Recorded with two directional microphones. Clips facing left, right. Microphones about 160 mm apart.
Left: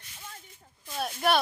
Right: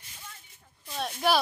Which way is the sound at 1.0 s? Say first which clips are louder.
Even; centre (ahead or behind).